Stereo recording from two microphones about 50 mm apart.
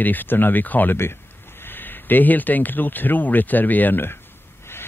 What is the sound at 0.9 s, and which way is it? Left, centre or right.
Speech, left.